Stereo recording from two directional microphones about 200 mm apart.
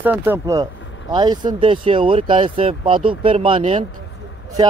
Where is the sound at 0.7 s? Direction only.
70° left (ahead or behind).